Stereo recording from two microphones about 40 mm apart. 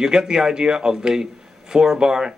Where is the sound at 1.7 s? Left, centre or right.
Centre.